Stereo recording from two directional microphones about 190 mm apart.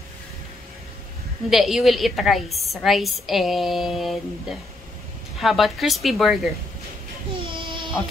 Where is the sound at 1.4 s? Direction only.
Centre (ahead or behind).